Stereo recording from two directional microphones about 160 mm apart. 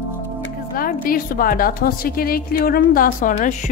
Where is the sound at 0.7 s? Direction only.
65° left (ahead or behind).